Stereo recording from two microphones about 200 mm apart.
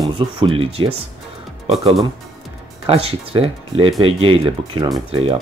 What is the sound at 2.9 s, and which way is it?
Speech, 30° right (ahead or behind).